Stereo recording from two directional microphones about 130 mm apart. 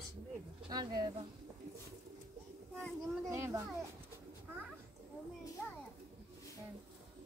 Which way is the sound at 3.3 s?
20° right (ahead or behind).